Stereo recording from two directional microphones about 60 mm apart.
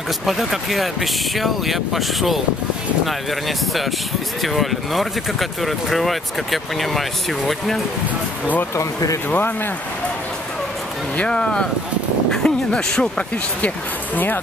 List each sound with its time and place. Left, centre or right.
0.3 s speech: centre
8.7 s speech: left
11.1 s speech: centre
14.1 s speech: left